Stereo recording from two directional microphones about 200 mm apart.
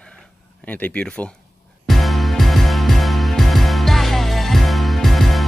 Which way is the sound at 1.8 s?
Centre (ahead or behind).